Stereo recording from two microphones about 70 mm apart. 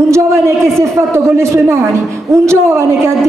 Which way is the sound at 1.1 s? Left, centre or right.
Right.